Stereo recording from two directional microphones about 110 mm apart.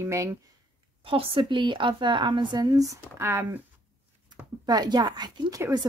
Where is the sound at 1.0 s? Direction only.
55° right (ahead or behind).